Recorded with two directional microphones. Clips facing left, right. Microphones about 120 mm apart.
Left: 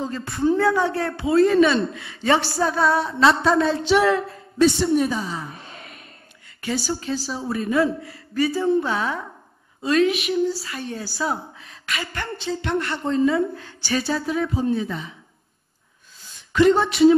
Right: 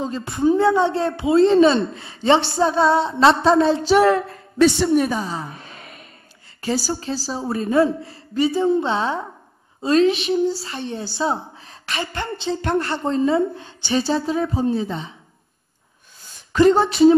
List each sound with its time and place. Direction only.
0.0 s speech: 20° right (ahead or behind)
4.6 s a woman's voice: 80° right
4.9 s a woman's voice: 65° right (ahead or behind)
5.2 s speech: 30° right (ahead or behind)
5.5 s a sound: centre (ahead or behind)
6.6 s speech: 30° right (ahead or behind)
16.5 s speech: 30° right (ahead or behind)